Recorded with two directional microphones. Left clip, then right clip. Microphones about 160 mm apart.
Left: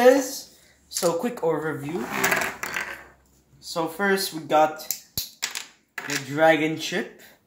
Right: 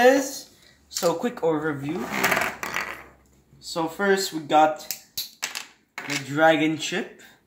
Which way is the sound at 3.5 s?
15° left (ahead or behind).